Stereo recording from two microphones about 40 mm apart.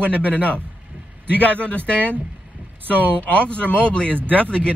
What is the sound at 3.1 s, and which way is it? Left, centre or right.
Speech, left.